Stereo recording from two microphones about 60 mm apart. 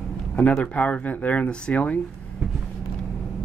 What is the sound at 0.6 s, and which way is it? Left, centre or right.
Speech, left.